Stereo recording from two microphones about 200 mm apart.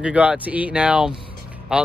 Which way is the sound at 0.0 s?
5° right (ahead or behind).